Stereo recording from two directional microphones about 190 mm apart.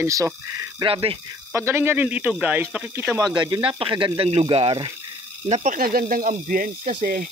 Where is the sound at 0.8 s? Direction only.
30° right (ahead or behind).